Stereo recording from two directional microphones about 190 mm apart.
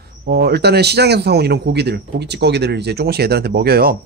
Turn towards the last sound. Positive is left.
turn(degrees=-55)  # may be behind; listen again after turning